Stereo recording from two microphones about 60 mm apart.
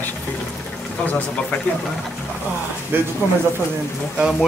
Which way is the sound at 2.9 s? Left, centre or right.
Right.